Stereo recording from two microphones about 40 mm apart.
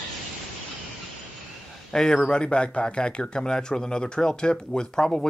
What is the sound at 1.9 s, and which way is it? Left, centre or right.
Speech, centre.